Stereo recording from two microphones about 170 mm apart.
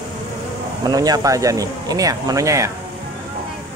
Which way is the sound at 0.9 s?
20° right (ahead or behind).